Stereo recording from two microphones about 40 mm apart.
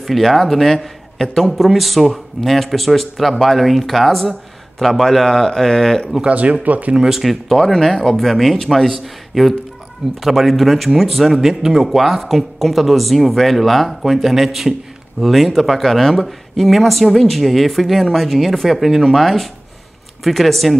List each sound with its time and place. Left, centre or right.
0.0 s speech: centre
6.2 s speech: right
7.0 s speech: centre